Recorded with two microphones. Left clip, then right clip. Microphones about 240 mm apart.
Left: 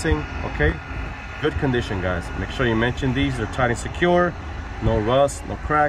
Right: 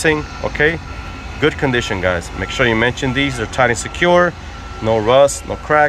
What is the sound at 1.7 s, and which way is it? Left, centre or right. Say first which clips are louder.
Speech: right 7 dB; centre.